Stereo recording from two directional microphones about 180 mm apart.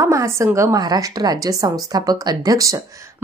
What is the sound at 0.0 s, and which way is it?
Speech, 15° right (ahead or behind).